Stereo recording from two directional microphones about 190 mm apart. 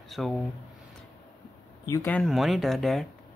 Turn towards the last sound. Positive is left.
turn(degrees=0)  # may be behind; listen again after turning